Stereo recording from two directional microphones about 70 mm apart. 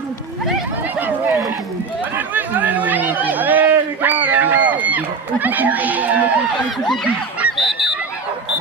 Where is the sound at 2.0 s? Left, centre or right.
Right.